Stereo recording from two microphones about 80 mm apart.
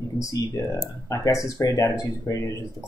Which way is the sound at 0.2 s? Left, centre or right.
Left.